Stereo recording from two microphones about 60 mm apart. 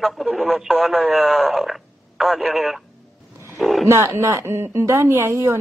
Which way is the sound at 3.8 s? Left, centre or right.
Right.